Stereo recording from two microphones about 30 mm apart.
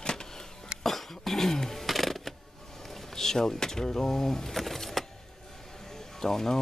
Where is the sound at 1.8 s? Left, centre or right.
Centre.